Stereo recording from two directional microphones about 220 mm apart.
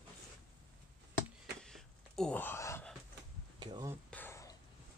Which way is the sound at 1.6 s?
Centre (ahead or behind).